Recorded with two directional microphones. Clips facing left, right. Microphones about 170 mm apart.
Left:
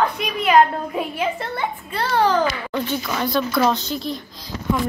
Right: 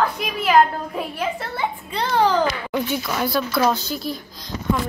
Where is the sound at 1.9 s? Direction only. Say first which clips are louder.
Even; 15° right (ahead or behind).